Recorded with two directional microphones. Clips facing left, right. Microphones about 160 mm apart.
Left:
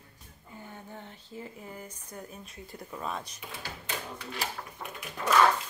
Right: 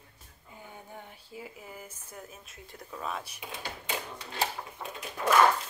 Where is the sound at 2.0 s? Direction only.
5° right (ahead or behind).